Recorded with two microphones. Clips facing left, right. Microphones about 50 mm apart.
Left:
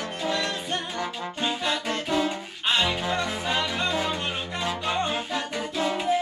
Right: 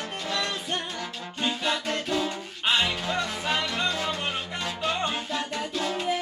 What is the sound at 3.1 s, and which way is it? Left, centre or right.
Music, centre.